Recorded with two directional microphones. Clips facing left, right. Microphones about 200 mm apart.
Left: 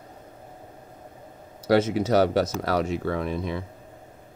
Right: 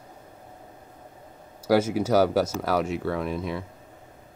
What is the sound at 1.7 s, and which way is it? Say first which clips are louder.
Speech: left 1 dB; 5° right (ahead or behind).